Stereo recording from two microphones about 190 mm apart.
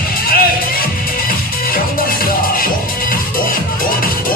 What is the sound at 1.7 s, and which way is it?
Music, 50° left (ahead or behind).